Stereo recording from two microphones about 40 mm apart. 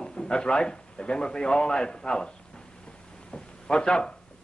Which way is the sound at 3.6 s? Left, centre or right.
Left.